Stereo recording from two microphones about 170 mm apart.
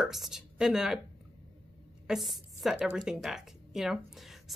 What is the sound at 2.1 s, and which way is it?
Speech, centre (ahead or behind).